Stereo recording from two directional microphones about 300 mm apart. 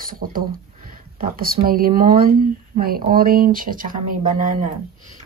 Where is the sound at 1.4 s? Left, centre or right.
Right.